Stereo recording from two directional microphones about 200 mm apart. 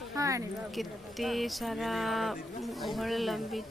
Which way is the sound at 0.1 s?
15° right (ahead or behind).